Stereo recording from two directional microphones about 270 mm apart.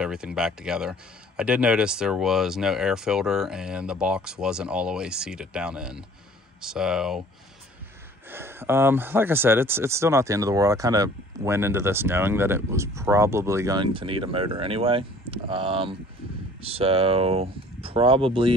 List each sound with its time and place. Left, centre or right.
0.0 s speech: centre
8.3 s speech: centre